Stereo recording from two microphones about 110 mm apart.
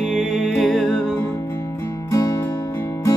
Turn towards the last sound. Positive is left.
turn(degrees=25)  # may be behind; listen again after turning